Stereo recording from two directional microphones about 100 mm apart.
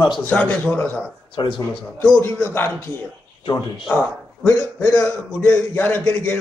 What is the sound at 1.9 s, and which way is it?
Speech, 25° left (ahead or behind).